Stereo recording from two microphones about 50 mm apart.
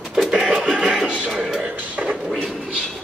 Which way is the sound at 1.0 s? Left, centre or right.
Right.